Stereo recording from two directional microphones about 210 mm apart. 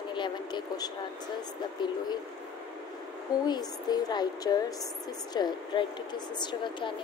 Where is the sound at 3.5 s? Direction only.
20° left (ahead or behind).